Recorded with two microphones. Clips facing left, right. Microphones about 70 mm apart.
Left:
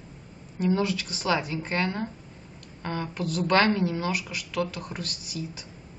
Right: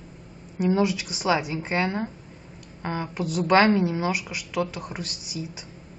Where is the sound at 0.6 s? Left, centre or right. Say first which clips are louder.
Right 3 dB; centre.